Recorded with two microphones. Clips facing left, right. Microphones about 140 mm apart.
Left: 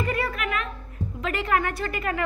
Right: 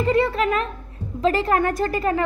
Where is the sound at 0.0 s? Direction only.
25° right (ahead or behind).